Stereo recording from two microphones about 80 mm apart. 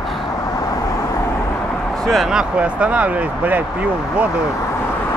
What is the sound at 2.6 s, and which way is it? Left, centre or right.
Speech, centre.